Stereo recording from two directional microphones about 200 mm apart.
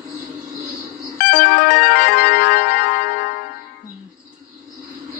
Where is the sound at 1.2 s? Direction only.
50° left (ahead or behind).